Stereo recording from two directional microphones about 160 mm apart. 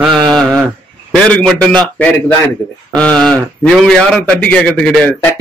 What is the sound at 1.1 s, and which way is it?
Speech, 5° left (ahead or behind).